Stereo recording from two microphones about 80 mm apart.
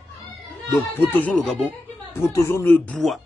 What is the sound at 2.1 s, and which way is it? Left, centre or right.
Speech, left.